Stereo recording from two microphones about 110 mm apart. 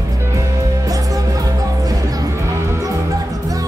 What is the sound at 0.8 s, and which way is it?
Music, 35° right (ahead or behind).